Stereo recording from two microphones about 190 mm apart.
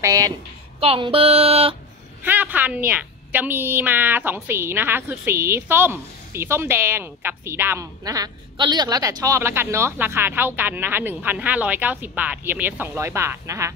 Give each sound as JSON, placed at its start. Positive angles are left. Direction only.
{"t": 0.0, "sound": "a woman's voice", "side_deg": -20}
{"t": 0.7, "sound": "speech", "side_deg": -30}
{"t": 2.2, "sound": "a woman's voice", "side_deg": -10}